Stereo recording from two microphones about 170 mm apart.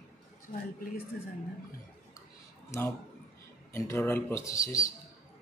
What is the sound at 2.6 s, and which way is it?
Speech, 15° left (ahead or behind).